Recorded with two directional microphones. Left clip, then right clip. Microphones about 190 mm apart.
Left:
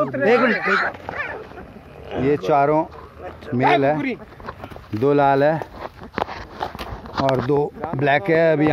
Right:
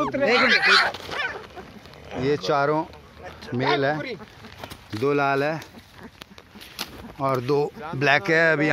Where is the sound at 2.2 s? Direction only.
5° right (ahead or behind).